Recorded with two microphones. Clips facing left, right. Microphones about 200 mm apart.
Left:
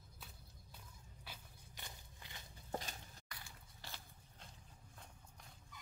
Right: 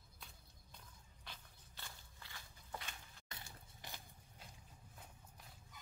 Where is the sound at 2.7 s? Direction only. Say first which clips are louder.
Left 6 dB; 40° left (ahead or behind).